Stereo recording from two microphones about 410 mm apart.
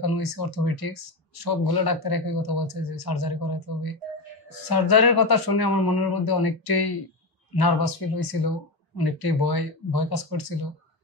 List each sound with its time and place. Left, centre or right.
0.0 s speech: left